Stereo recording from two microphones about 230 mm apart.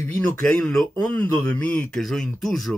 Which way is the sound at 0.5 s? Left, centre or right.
Centre.